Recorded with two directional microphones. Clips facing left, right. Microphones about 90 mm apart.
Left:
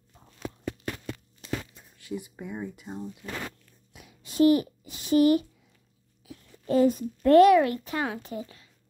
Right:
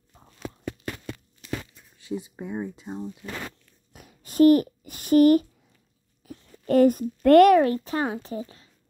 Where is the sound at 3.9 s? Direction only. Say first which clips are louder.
Right 4 dB; 45° right (ahead or behind).